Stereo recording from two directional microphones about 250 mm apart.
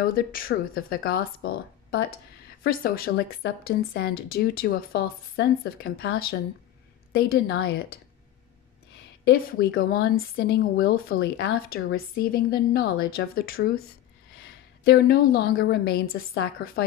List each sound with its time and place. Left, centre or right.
0.0 s speech: left
9.2 s a woman's voice: left